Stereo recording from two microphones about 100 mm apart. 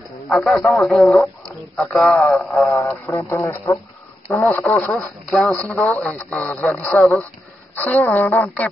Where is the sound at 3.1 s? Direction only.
25° left (ahead or behind); by 6.2 s 10° left (ahead or behind).